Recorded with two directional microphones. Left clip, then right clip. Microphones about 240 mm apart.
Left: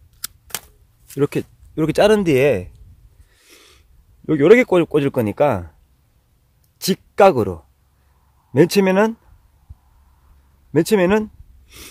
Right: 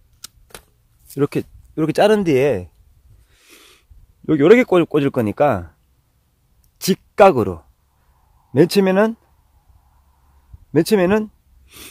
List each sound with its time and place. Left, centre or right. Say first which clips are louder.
1.1 s speech: even; centre
3.3 s wheeze: right 1 dB; right
4.3 s speech: even; right
6.8 s speech: right 1 dB; right
10.7 s speech: even; right